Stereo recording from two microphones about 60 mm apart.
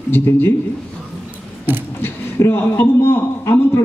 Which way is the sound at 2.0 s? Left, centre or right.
Left.